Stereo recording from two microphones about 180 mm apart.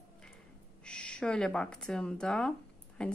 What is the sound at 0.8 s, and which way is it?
A woman's voice, 5° left (ahead or behind).